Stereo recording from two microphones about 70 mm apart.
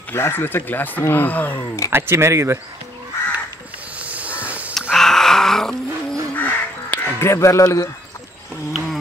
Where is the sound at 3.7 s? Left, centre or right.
Right.